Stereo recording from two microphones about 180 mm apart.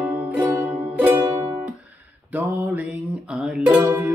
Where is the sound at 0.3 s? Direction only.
10° right (ahead or behind).